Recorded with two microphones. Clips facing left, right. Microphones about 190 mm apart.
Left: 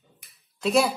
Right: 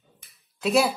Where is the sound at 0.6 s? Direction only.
Centre (ahead or behind).